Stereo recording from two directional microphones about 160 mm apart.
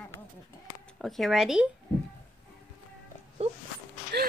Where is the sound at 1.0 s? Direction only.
Centre (ahead or behind).